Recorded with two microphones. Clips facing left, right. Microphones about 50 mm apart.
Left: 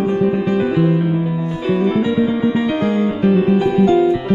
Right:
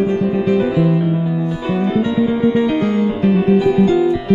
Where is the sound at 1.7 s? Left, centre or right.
Centre.